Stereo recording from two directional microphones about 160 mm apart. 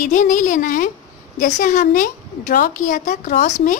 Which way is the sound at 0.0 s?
50° left (ahead or behind).